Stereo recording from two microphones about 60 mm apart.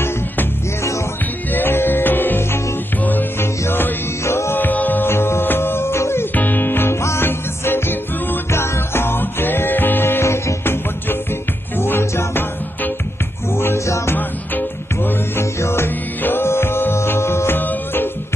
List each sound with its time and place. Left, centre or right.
1.5 s music: left
4.2 s music: left
4.6 s music: left
5.1 s music: left
6.3 s music: left
6.9 s music: left
7.2 s music: left
13.6 s music: left
15.6 s music: left
16.2 s music: left
16.4 s music: left